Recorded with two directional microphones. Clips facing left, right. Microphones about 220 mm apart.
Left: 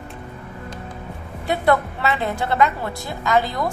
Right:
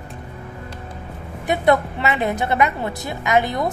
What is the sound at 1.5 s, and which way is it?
A woman's voice, 20° right (ahead or behind).